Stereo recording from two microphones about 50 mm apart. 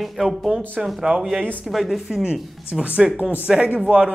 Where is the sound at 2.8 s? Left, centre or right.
Right.